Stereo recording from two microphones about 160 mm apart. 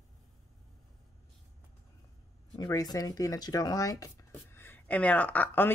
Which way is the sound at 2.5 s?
25° left (ahead or behind).